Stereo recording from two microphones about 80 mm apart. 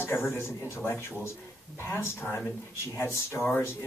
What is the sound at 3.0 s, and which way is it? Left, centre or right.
Speech, left.